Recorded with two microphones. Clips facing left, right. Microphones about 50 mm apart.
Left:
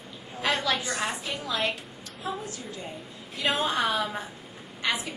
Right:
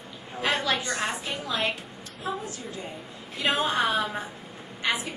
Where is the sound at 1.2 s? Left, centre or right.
Centre.